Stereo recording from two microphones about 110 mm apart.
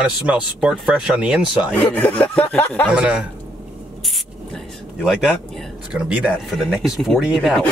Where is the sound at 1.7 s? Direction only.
15° left (ahead or behind).